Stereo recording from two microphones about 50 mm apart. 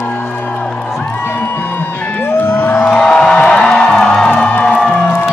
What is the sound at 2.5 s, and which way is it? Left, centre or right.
Music, left.